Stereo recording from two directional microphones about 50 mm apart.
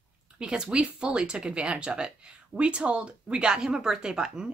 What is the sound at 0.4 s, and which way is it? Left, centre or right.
Speech, centre.